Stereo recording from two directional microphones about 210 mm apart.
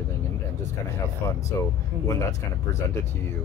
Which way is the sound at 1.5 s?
15° left (ahead or behind).